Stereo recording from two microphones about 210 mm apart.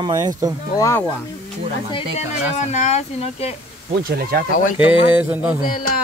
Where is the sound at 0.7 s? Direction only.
15° left (ahead or behind).